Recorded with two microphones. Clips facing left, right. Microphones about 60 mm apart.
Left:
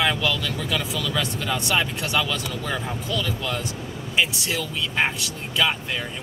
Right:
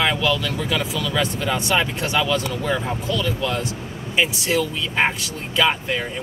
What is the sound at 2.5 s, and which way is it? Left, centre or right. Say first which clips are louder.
Speech: right 5 dB; centre.